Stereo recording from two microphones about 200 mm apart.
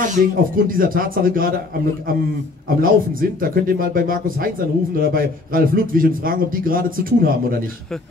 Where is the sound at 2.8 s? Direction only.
45° right (ahead or behind).